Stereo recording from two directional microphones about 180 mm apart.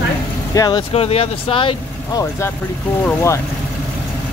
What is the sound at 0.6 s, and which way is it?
Speech, 25° left (ahead or behind).